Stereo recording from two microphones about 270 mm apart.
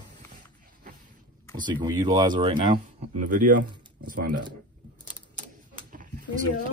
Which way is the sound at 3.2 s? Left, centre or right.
Right.